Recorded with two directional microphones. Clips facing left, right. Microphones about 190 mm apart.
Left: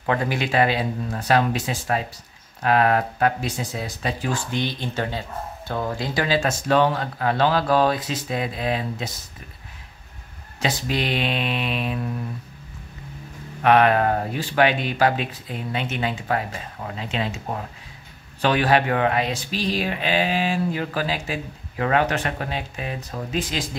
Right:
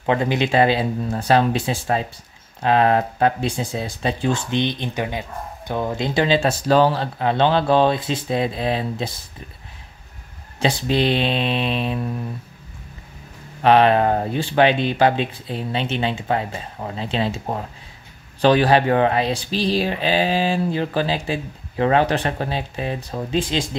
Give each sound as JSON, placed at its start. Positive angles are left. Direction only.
{"t": 0.0, "sound": "speech", "side_deg": -20}
{"t": 7.2, "sound": "speech", "side_deg": -25}
{"t": 10.6, "sound": "speech", "side_deg": -30}
{"t": 13.6, "sound": "speech", "side_deg": -30}
{"t": 18.4, "sound": "speech", "side_deg": -30}